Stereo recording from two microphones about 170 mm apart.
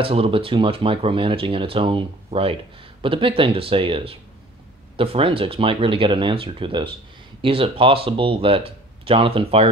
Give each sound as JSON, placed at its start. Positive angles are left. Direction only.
{"t": 0.0, "sound": "speech", "side_deg": -35}